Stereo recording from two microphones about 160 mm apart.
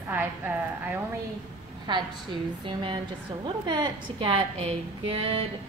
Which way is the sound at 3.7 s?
30° right (ahead or behind).